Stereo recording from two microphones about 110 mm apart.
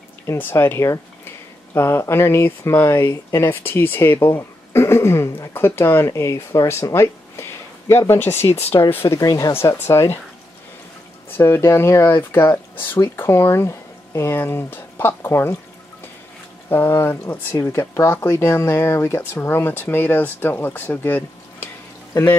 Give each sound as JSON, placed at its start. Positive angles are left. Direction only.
{"t": 0.3, "sound": "speech", "side_deg": 20}
{"t": 8.5, "sound": "speech", "side_deg": 65}
{"t": 9.1, "sound": "speech", "side_deg": 35}
{"t": 9.5, "sound": "speech", "side_deg": 25}
{"t": 11.3, "sound": "speech", "side_deg": 20}
{"t": 16.6, "sound": "speech", "side_deg": 20}